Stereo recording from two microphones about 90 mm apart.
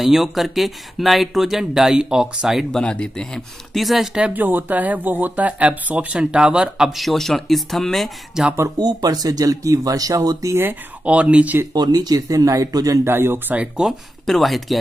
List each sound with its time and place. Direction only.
0.0 s speech: 5° right (ahead or behind)
2.7 s speech: 10° left (ahead or behind)
4.3 s speech: 20° right (ahead or behind); by 8.5 s centre (ahead or behind)
8.7 s speech: 50° right (ahead or behind)
10.6 s speech: 15° right (ahead or behind)
11.7 s speech: 50° right (ahead or behind)
13.0 s speech: 25° right (ahead or behind)
13.6 s speech: 10° right (ahead or behind)
14.2 s speech: centre (ahead or behind)